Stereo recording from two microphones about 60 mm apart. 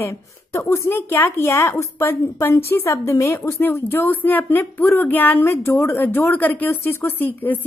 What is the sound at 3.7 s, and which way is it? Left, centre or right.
A woman's voice, left.